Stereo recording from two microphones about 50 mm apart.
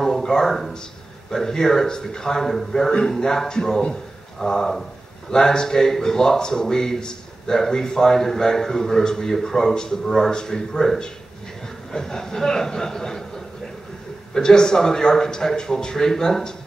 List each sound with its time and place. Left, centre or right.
0.0 s speech: centre
14.3 s speech: centre